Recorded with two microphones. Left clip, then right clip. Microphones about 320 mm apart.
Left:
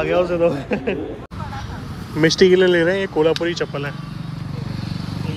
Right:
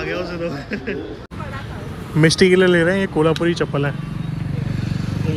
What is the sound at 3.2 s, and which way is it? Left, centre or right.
Speech, centre.